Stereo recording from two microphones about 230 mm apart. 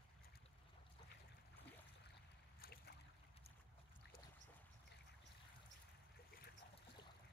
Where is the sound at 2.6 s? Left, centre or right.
Left.